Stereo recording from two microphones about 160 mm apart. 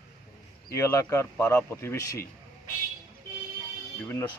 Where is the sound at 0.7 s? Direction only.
20° left (ahead or behind).